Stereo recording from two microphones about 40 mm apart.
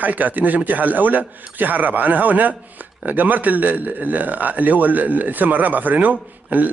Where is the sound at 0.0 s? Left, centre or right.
Right.